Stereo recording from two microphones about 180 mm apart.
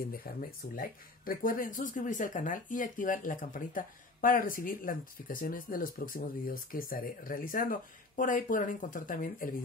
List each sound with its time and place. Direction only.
0.0 s speech: 55° left (ahead or behind)